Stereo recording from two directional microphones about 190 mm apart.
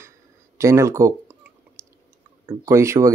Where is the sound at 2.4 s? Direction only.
15° right (ahead or behind).